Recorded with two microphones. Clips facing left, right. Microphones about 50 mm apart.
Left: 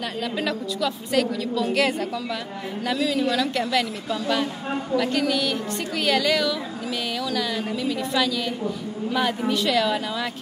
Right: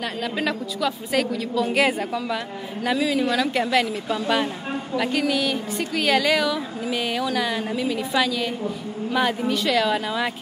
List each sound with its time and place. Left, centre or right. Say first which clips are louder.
0.2 s a woman's voice: right 1 dB; centre